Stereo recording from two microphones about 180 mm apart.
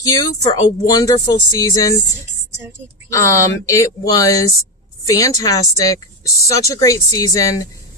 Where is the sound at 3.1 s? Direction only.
20° left (ahead or behind).